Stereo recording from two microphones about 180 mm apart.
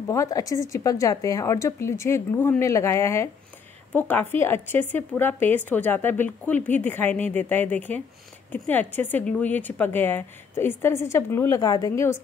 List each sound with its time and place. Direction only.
0.0 s speech: 15° left (ahead or behind)